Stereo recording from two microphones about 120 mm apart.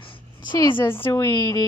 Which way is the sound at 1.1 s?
35° left (ahead or behind).